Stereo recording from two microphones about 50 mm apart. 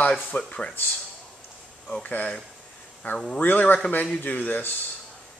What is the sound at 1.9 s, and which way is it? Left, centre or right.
Speech, left.